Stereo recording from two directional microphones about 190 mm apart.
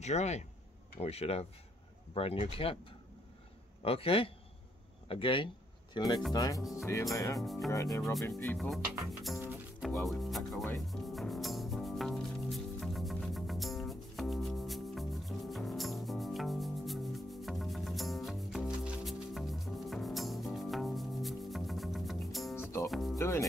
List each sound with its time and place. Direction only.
0.0 s a man's voice: 35° left (ahead or behind); by 6.6 s 20° left (ahead or behind)
7.7 s speech: 20° left (ahead or behind)
8.0 s speech: centre (ahead or behind)
9.4 s music: 10° right (ahead or behind)
9.8 s speech: centre (ahead or behind)
10.9 s music: centre (ahead or behind)
23.1 s rub: 15° left (ahead or behind)